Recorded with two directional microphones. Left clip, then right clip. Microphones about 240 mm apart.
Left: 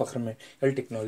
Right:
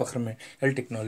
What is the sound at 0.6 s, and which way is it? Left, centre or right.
Speech, right.